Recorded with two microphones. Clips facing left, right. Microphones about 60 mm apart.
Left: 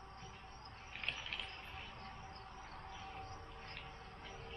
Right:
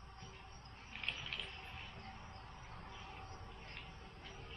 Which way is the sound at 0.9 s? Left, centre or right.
Centre.